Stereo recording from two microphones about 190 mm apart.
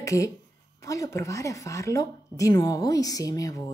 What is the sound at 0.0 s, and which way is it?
A woman's voice, 15° left (ahead or behind).